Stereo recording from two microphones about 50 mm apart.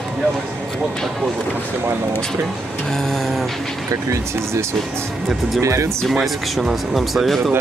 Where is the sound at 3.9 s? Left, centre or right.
Right.